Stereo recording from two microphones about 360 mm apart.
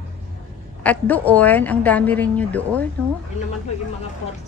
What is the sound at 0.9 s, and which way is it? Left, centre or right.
A woman's voice, centre.